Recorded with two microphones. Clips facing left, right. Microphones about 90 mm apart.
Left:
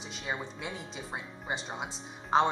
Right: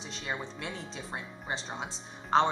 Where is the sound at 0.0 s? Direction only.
5° left (ahead or behind).